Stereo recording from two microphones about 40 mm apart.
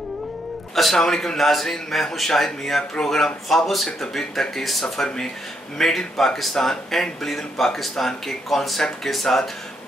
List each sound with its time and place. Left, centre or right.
0.9 s speech: centre